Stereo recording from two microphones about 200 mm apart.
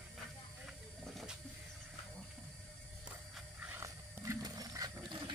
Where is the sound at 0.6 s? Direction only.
Centre (ahead or behind).